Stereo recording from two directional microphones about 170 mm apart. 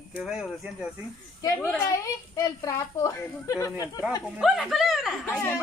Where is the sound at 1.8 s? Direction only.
15° left (ahead or behind).